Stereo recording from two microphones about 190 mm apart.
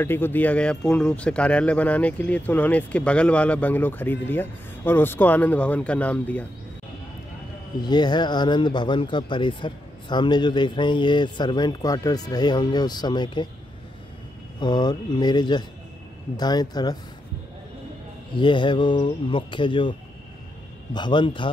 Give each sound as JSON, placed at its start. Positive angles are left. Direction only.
{"t": 0.0, "sound": "speech", "side_deg": 10}
{"t": 7.8, "sound": "speech", "side_deg": 20}
{"t": 14.6, "sound": "speech", "side_deg": 20}
{"t": 18.3, "sound": "speech", "side_deg": 25}